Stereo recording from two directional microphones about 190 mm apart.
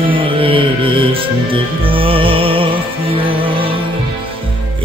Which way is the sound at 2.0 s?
30° right (ahead or behind).